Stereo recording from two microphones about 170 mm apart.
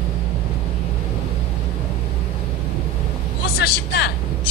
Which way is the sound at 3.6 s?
75° left (ahead or behind).